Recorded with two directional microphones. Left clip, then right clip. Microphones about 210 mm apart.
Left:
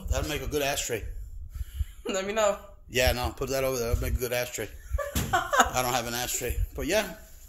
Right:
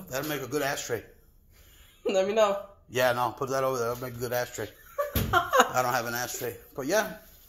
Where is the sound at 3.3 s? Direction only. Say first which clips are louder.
Even; 40° left (ahead or behind).